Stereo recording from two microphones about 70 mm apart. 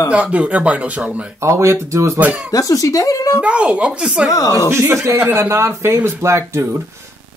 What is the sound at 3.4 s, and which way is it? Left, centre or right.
Speech, centre.